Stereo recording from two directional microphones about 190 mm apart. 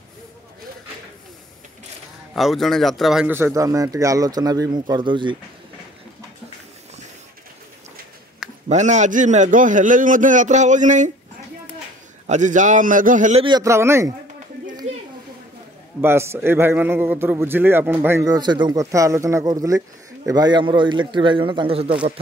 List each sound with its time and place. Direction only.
2.3 s a man's voice: centre (ahead or behind); by 5.4 s 25° right (ahead or behind)
8.6 s a man's voice: 40° right (ahead or behind)
12.3 s a man's voice: 40° right (ahead or behind)
13.4 s a man's voice: 20° right (ahead or behind)
16.0 s a man's voice: 15° right (ahead or behind); by 21.9 s 30° right (ahead or behind)